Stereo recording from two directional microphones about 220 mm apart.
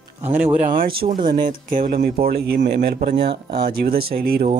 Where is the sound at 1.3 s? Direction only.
40° right (ahead or behind).